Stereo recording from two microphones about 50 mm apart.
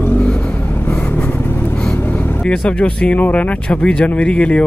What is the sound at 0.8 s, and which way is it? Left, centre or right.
Vehicle, left.